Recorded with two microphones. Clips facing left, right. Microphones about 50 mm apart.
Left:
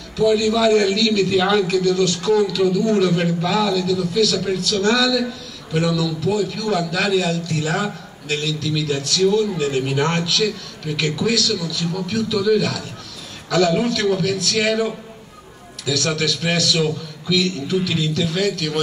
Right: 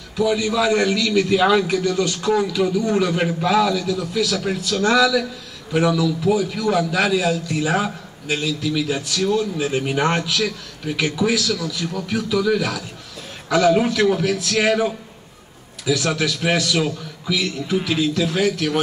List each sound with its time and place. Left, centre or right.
0.2 s a man's voice: centre